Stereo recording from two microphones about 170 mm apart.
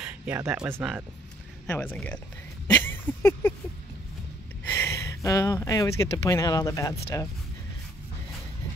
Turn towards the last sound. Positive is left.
turn(degrees=20)  # may be behind; listen again after turning